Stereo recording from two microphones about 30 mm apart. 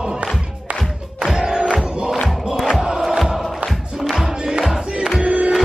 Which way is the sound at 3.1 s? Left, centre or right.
Centre.